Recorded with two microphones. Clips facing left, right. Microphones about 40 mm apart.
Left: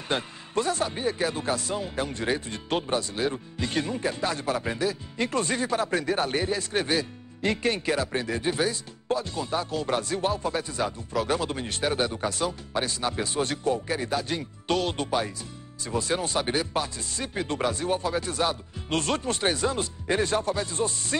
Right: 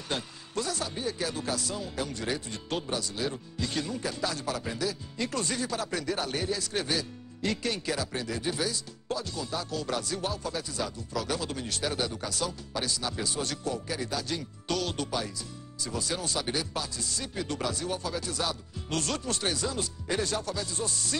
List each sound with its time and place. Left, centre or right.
0.1 s speech: left